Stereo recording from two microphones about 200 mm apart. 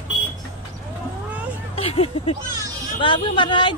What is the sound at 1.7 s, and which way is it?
Speech, 30° left (ahead or behind).